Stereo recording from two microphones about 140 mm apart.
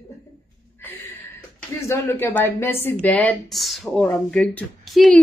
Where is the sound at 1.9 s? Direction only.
15° left (ahead or behind).